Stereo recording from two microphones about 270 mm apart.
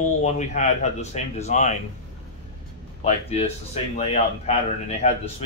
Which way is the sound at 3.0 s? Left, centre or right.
Left.